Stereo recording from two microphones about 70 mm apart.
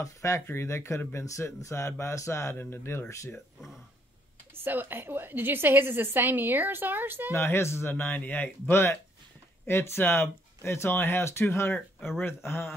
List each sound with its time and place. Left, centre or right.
0.0 s speech: left
2.5 s speech: left
4.6 s a woman's voice: right
7.3 s speech: left
7.9 s speech: left